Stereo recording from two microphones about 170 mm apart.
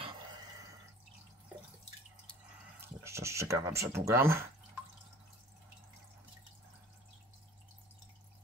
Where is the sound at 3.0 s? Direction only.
15° right (ahead or behind).